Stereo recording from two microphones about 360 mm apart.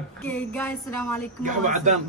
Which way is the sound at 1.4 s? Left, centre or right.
Right.